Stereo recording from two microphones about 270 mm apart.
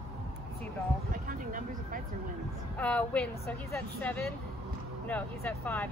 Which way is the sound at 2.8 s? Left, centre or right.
Centre.